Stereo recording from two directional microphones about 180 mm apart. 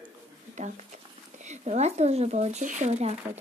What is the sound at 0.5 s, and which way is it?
Speech, 40° right (ahead or behind).